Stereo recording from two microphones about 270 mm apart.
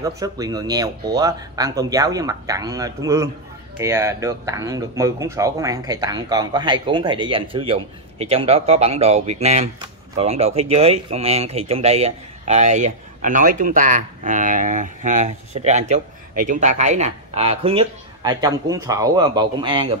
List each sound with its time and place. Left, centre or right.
0.0 s speech: centre